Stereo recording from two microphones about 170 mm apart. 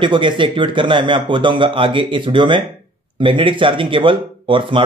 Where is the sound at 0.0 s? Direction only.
30° right (ahead or behind).